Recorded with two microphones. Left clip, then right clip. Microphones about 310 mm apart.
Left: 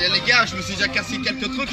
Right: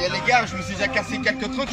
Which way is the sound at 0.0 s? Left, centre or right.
Right.